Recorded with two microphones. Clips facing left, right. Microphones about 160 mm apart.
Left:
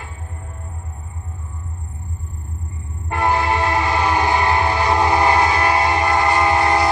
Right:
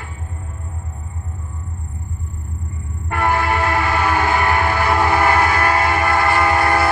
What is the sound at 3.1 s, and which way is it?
Train, 20° left (ahead or behind).